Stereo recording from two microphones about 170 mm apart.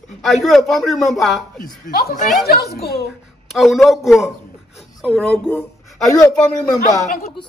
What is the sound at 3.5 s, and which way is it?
A man's voice, centre (ahead or behind).